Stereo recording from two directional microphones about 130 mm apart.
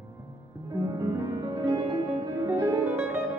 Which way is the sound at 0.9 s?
30° right (ahead or behind).